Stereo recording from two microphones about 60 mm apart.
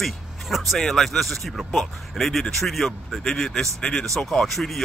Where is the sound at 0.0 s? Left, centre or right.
Centre.